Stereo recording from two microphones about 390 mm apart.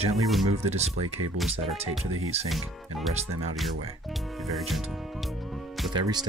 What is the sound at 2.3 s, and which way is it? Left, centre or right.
Speech, centre.